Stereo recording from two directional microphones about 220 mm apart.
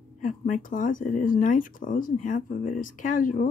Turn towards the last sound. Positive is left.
turn(degrees=35)  # may be behind; listen again after turning